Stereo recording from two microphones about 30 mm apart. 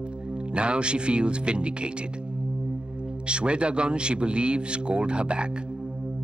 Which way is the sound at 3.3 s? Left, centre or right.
Right.